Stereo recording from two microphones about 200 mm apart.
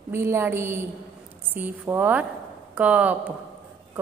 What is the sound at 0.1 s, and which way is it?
A woman's voice, 10° right (ahead or behind).